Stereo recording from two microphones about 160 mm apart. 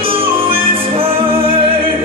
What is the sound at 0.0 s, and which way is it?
Music, 35° right (ahead or behind).